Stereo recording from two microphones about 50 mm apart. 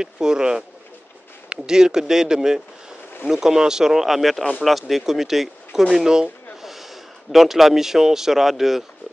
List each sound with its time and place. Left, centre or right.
0.0 s speech: centre